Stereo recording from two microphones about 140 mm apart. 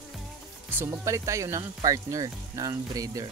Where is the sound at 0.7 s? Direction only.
15° right (ahead or behind).